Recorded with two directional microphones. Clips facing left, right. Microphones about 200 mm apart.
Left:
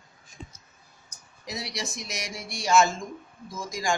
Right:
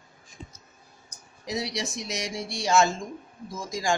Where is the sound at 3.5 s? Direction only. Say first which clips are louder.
Right 1 dB; 25° right (ahead or behind).